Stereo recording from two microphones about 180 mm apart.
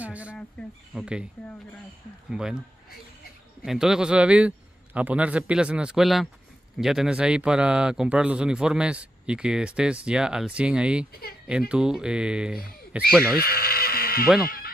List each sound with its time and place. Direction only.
0.0 s a sound: 10° right (ahead or behind)
0.9 s speech: 5° right (ahead or behind)
2.3 s speech: 5° right (ahead or behind)
3.6 s speech: 5° right (ahead or behind)
13.4 s speech: 55° left (ahead or behind)